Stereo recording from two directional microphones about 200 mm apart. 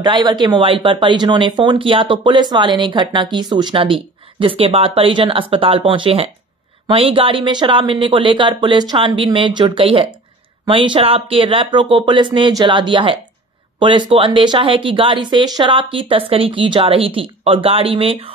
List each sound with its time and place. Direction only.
0.0 s speech: 20° right (ahead or behind)